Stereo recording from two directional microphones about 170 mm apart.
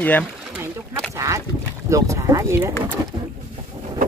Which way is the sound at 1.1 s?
15° right (ahead or behind).